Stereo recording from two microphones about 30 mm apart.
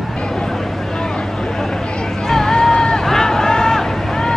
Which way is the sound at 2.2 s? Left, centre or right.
Centre.